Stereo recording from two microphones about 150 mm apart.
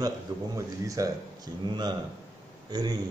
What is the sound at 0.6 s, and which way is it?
A man's voice, 20° right (ahead or behind).